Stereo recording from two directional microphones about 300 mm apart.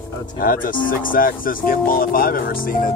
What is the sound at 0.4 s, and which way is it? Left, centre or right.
Speech, left.